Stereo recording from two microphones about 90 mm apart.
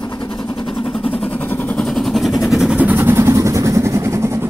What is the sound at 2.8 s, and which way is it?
Vehicle, 20° right (ahead or behind).